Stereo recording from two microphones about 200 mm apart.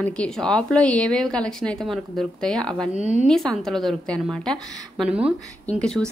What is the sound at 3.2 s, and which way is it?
A woman's voice, 5° left (ahead or behind).